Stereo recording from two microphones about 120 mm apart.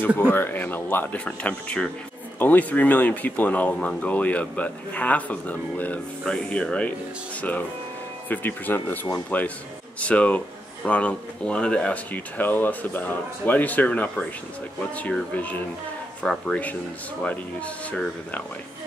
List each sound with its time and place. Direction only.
0.3 s speech: 15° left (ahead or behind)
8.3 s speech: 15° left (ahead or behind)